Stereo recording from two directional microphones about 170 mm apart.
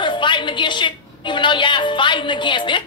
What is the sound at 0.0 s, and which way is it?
A woman's voice, 30° left (ahead or behind).